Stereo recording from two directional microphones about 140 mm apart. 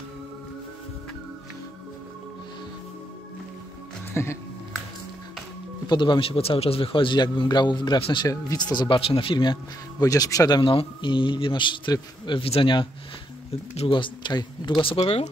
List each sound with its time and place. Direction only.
4.1 s speech: 20° left (ahead or behind)
5.9 s a man's voice: 35° left (ahead or behind)
10.6 s a man's voice: 40° left (ahead or behind)